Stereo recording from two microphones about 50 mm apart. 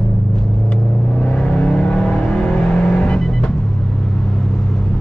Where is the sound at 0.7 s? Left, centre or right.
Left.